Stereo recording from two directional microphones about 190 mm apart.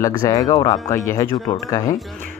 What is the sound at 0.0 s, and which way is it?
Speech, 20° left (ahead or behind).